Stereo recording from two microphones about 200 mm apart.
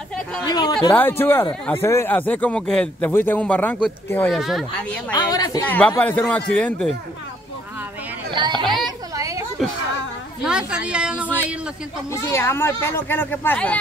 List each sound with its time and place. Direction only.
0.5 s speech: 20° left (ahead or behind)
5.1 s speech: 20° left (ahead or behind)
8.3 s chatter: 25° right (ahead or behind)
9.1 s a sound: 15° right (ahead or behind)
9.6 s a woman's voice: centre (ahead or behind)
12.1 s speech: 15° left (ahead or behind)